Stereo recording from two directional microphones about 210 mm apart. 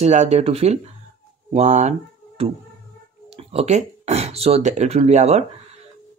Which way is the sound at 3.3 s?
30° right (ahead or behind).